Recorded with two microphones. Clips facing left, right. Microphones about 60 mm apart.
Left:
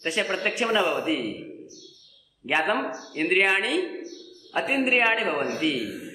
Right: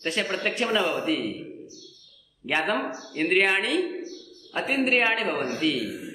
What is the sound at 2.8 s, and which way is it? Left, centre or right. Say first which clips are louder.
Speech: left 1 dB; left.